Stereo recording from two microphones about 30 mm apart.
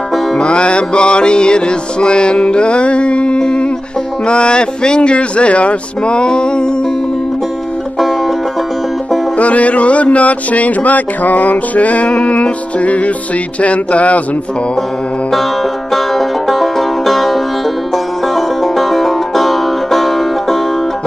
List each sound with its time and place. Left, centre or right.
0.4 s music: left
5.1 s music: left
9.4 s speech: left
15.9 s music: centre